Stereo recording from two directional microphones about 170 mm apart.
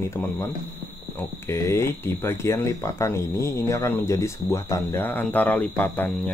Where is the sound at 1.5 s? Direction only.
15° left (ahead or behind).